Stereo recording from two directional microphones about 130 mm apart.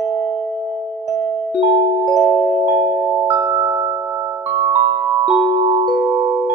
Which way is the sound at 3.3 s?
30° right (ahead or behind).